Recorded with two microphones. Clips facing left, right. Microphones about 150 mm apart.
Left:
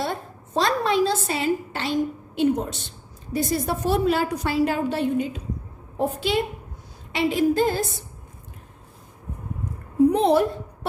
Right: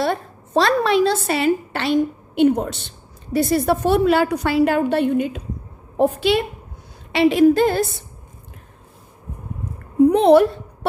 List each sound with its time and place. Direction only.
0.0 s a woman's voice: 75° right (ahead or behind)
10.1 s a woman's voice: 70° right (ahead or behind)